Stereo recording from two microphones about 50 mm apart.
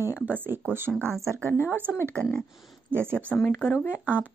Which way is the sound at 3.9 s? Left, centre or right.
Right.